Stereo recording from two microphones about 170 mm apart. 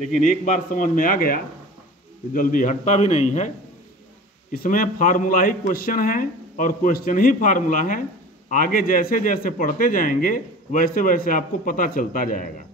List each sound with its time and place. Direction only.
0.0 s a man's voice: 45° left (ahead or behind)